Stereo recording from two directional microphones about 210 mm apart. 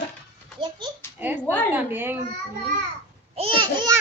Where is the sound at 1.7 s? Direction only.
10° right (ahead or behind).